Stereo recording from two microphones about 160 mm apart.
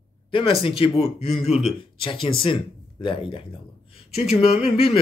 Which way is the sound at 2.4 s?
30° left (ahead or behind).